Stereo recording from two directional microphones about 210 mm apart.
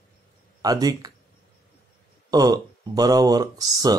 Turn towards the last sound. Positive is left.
turn(degrees=-15)  # may be behind; listen again after turning